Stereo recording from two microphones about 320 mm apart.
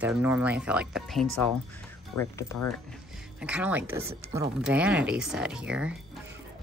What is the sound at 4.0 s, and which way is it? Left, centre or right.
Speech, centre.